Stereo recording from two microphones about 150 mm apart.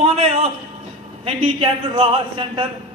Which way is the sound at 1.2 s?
35° right (ahead or behind).